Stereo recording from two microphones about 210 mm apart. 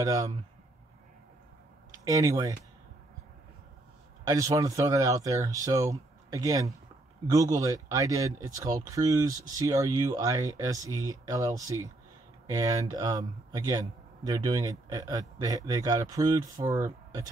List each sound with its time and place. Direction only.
0.0 s a man's voice: 15° right (ahead or behind)
2.0 s a man's voice: 15° right (ahead or behind)
4.2 s a man's voice: 15° right (ahead or behind)